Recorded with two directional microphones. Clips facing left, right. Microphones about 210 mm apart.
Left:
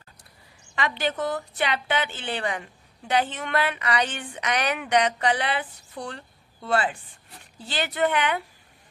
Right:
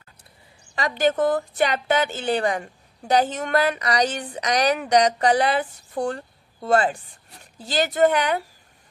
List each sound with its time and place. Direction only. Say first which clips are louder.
0.7 s a woman's voice: right 6 dB; 40° right (ahead or behind)